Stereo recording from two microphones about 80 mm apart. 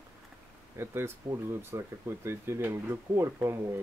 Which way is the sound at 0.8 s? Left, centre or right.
Right.